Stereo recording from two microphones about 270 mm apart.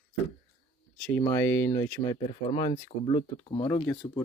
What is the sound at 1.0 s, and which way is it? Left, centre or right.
Speech, centre.